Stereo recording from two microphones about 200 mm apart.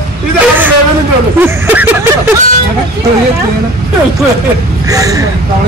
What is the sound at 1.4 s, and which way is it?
Speech, 10° right (ahead or behind).